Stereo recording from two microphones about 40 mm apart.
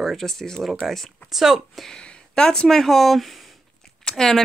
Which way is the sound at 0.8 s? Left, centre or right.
Centre.